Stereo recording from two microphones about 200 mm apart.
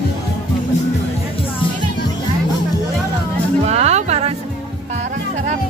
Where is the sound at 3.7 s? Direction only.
30° right (ahead or behind).